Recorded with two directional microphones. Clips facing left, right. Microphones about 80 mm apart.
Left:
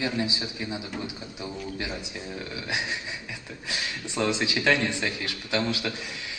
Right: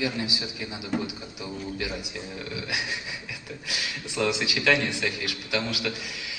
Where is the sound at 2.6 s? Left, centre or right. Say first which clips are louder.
Left 3 dB; left.